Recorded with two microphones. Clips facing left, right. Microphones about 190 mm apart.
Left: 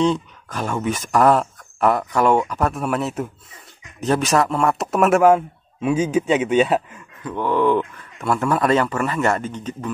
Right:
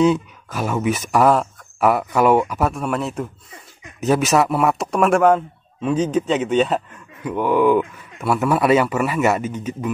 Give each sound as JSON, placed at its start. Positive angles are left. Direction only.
{"t": 0.0, "sound": "speech", "side_deg": -5}
{"t": 7.2, "sound": "speech", "side_deg": -10}